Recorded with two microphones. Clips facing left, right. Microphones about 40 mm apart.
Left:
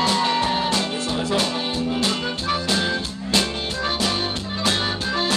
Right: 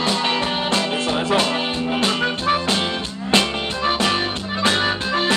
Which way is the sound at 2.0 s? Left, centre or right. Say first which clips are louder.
Right 3 dB; right.